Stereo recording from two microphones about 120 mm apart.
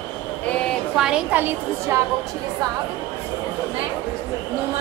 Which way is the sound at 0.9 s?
5° right (ahead or behind).